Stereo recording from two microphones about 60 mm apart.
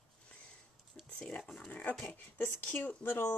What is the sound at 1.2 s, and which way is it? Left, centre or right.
Speech, centre.